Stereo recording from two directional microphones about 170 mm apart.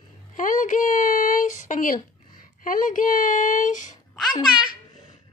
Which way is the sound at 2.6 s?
55° left (ahead or behind).